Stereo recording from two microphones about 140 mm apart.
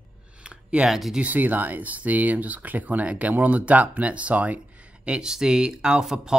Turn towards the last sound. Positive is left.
turn(degrees=-5)  # may be behind; listen again after turning